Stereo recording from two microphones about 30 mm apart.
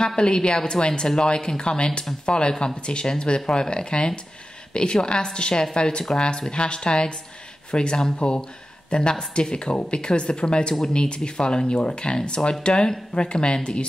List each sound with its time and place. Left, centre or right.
0.0 s speech: left